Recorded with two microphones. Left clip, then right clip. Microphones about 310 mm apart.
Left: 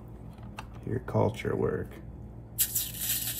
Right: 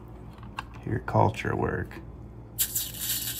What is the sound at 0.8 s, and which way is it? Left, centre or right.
Speech, right.